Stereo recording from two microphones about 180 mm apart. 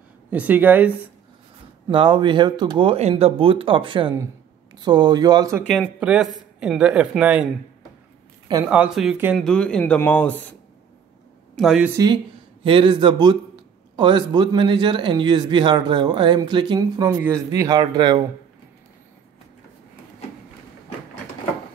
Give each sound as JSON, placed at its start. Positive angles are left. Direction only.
{"t": 0.3, "sound": "speech", "side_deg": -10}
{"t": 1.9, "sound": "a man's voice", "side_deg": -25}
{"t": 5.6, "sound": "speech", "side_deg": 5}
{"t": 5.9, "sound": "speech", "side_deg": -5}
{"t": 8.6, "sound": "speech", "side_deg": -5}
{"t": 9.4, "sound": "speech", "side_deg": 5}
{"t": 11.5, "sound": "a woman's voice", "side_deg": 0}
{"t": 12.6, "sound": "a man's voice", "side_deg": -30}